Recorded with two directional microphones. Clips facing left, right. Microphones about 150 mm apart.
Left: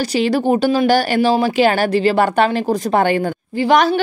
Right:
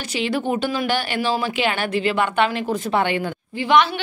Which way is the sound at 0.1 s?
35° left (ahead or behind).